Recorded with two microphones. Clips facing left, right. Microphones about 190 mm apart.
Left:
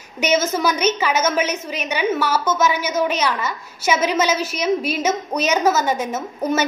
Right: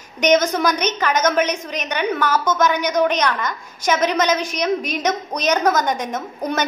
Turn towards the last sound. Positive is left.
turn(degrees=5)  # may be behind; listen again after turning